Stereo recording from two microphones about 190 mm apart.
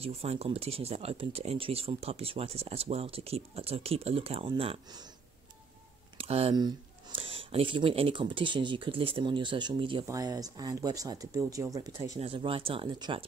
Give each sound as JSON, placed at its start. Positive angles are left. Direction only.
{"t": 0.0, "sound": "speech", "side_deg": -30}
{"t": 6.1, "sound": "speech", "side_deg": -30}
{"t": 12.2, "sound": "speech", "side_deg": -30}